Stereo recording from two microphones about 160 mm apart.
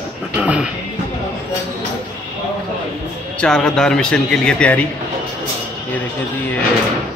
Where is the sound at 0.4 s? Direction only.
10° right (ahead or behind).